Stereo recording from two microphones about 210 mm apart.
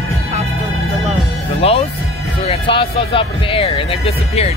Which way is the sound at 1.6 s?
30° left (ahead or behind).